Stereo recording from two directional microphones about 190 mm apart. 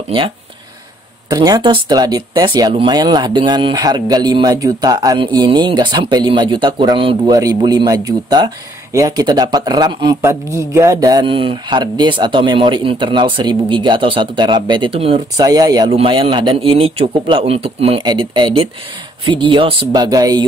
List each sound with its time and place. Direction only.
1.3 s speech: 20° right (ahead or behind)